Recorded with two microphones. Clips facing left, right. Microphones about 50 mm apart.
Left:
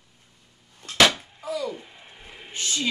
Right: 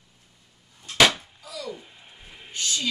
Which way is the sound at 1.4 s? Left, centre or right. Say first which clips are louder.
Left 10 dB; left.